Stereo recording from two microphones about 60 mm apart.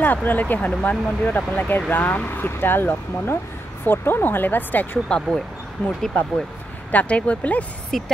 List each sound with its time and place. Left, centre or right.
0.0 s speech: left
5.0 s speech: centre
7.9 s speech: centre